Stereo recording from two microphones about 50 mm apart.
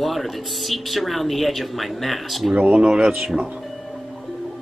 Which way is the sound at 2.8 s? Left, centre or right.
Centre.